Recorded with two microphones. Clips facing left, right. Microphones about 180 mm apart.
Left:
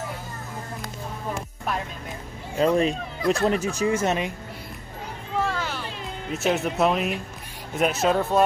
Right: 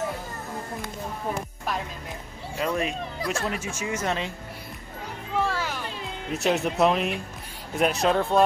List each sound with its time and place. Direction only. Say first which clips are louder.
2.6 s speech: left 6 dB; 35° left (ahead or behind)
5.4 s music: even; 10° right (ahead or behind)
6.3 s speech: even; centre (ahead or behind)